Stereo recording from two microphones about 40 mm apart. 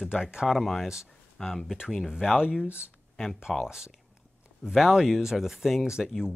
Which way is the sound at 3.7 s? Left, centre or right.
Centre.